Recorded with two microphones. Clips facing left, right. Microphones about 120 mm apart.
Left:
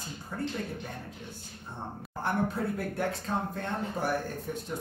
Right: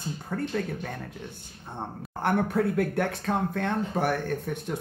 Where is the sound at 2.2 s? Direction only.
65° right (ahead or behind).